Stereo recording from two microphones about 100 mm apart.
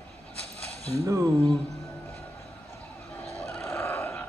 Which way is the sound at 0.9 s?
35° right (ahead or behind).